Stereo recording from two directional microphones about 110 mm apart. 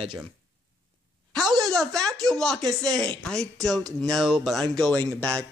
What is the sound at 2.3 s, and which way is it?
Speech, 5° left (ahead or behind).